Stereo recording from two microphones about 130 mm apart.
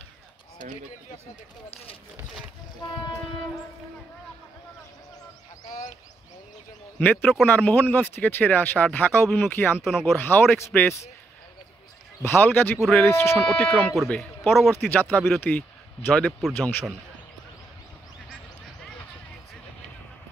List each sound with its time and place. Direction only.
7.0 s speech: 15° left (ahead or behind)
12.2 s speech: 15° left (ahead or behind)
13.4 s speech: 5° left (ahead or behind)
15.1 s speech: centre (ahead or behind)
15.4 s speech: 15° left (ahead or behind)